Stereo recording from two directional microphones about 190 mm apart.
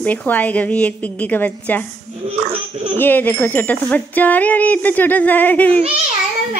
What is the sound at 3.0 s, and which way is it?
A woman's voice, 10° left (ahead or behind).